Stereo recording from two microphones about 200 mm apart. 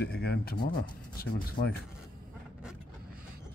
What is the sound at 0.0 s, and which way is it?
Speech, 55° left (ahead or behind).